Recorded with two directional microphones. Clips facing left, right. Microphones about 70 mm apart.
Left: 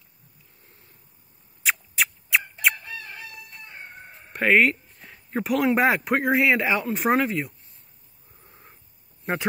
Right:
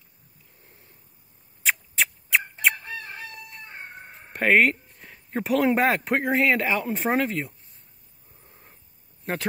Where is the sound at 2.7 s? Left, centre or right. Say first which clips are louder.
Right 2 dB; right.